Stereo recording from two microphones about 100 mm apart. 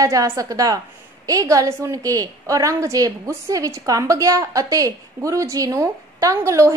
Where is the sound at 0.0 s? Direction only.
35° right (ahead or behind).